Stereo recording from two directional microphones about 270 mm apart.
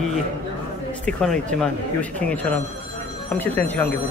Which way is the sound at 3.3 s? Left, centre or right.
Centre.